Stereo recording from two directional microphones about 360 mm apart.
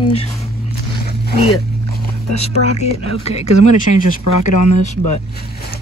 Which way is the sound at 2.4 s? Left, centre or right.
Centre.